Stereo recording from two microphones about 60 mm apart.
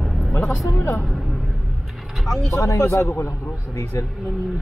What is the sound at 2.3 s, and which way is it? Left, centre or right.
Speech, centre.